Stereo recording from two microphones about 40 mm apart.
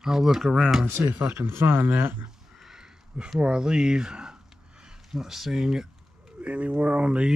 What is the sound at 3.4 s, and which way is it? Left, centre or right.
Speech, right.